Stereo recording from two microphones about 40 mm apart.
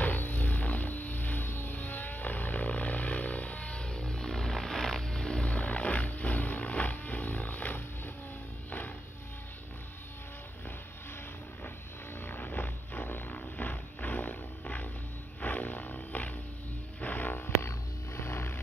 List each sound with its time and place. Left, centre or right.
0.0 s music: left
5.5 s wild animals: left
12.3 s a sound: left
15.4 s roaring cats: left
17.0 s wild animals: left
18.2 s a sound: left